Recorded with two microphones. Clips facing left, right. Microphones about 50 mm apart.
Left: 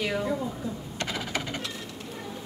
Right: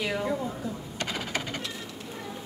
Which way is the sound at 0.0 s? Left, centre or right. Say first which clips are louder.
Left 1 dB; centre.